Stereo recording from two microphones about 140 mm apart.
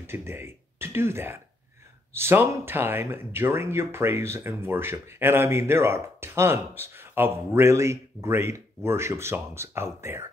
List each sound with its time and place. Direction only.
0.0 s speech: 15° right (ahead or behind)